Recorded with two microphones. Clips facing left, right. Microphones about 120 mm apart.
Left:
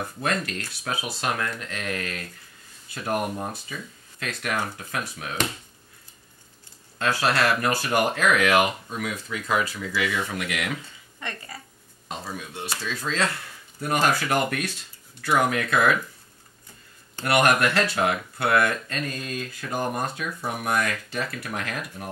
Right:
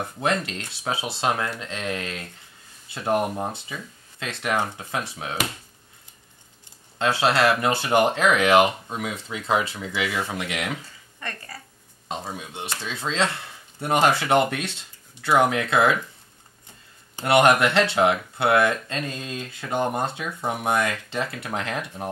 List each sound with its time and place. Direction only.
0.0 s speech: 25° right (ahead or behind)
7.0 s speech: 25° right (ahead or behind)
11.1 s speech: 20° left (ahead or behind)
12.1 s speech: 25° right (ahead or behind)
17.1 s speech: 25° right (ahead or behind)